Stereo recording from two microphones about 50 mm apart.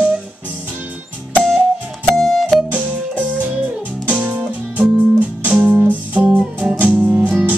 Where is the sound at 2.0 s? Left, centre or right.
Centre.